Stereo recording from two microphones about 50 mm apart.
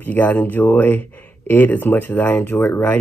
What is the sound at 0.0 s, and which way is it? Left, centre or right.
Speech, left.